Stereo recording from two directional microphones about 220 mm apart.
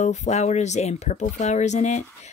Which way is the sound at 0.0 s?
30° left (ahead or behind).